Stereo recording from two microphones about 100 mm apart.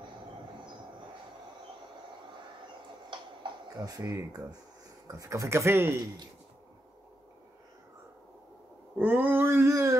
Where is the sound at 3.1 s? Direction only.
55° right (ahead or behind).